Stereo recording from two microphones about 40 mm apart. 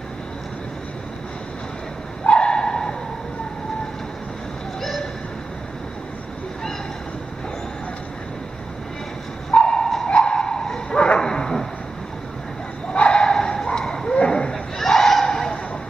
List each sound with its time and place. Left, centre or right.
2.2 s bow-wow: left
9.5 s sonar: left
10.0 s dog: left
12.9 s bow-wow: left
13.2 s bow-wow: centre
14.2 s a sound: left
14.8 s a sound: centre